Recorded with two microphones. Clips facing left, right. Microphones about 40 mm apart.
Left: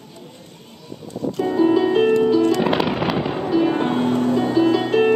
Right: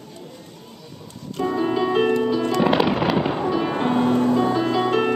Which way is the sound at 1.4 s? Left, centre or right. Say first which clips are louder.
Left 4 dB; centre.